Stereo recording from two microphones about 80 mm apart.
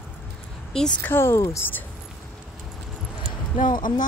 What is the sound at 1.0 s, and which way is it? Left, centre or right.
Speech, left.